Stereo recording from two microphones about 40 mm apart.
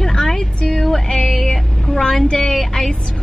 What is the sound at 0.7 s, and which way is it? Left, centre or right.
Music, centre.